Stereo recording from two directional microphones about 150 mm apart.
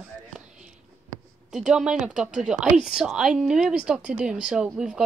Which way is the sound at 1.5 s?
5° right (ahead or behind).